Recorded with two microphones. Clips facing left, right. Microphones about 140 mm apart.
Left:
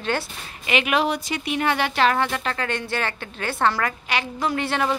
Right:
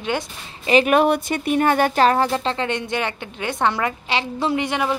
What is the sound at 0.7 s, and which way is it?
Speech, 35° right (ahead or behind).